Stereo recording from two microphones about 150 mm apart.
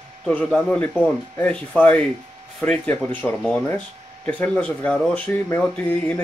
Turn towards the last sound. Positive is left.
turn(degrees=10)  # may be behind; listen again after turning